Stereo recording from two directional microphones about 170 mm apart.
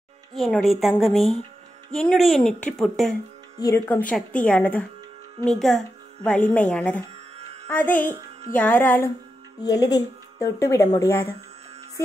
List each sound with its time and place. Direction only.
0.3 s speech: centre (ahead or behind)
3.5 s a woman's voice: 20° left (ahead or behind)
9.6 s speech: 20° left (ahead or behind)